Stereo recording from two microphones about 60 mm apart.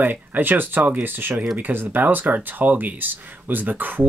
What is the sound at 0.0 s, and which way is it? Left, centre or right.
Speech, right.